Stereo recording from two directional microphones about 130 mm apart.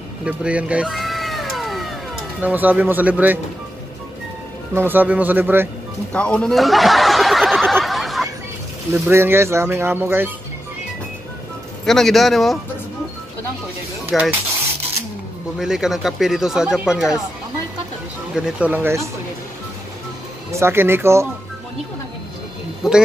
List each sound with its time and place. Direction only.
0.2 s cat: 10° right (ahead or behind)
2.4 s speech: 15° right (ahead or behind)
4.7 s speech: 15° right (ahead or behind)
6.1 s snicker: 10° left (ahead or behind)
8.9 s speech: 15° right (ahead or behind)
11.8 s speech: centre (ahead or behind)
14.1 s speech: centre (ahead or behind)
15.6 s speech: 5° right (ahead or behind)
18.3 s speech: 10° right (ahead or behind)
20.5 s speech: 20° right (ahead or behind)
22.8 s speech: 5° right (ahead or behind)